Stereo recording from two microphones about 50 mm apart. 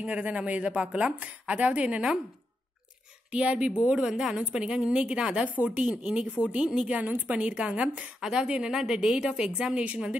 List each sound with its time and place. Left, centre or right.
0.0 s a woman's voice: right
3.3 s a woman's voice: right